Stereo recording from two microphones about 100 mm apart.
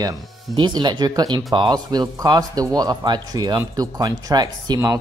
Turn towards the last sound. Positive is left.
turn(degrees=-45)  # may be behind; listen again after turning